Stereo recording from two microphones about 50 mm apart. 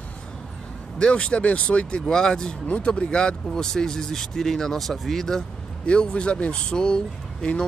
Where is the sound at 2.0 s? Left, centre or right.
Centre.